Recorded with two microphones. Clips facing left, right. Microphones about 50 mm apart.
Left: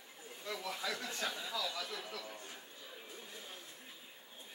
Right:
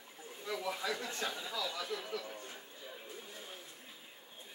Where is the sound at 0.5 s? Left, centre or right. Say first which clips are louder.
Right 4 dB; centre.